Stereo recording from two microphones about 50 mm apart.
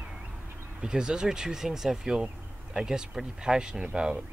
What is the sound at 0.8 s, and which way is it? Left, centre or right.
Speech, centre.